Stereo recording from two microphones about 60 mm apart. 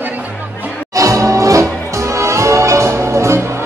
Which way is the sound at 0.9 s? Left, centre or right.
Right.